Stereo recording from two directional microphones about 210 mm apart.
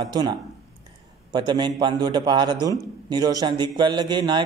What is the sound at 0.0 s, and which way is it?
A man's voice, 20° right (ahead or behind).